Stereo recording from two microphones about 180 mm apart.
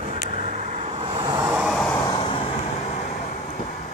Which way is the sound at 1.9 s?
30° left (ahead or behind).